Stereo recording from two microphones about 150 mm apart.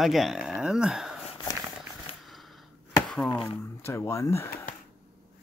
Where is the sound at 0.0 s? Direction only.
Centre (ahead or behind).